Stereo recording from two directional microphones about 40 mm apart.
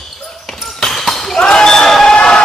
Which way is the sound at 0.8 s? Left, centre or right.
Centre.